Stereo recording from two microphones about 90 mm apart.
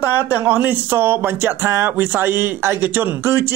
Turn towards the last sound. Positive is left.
turn(degrees=-25)  # may be behind; listen again after turning